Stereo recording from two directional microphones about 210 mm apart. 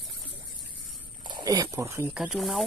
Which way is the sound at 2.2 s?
Centre (ahead or behind).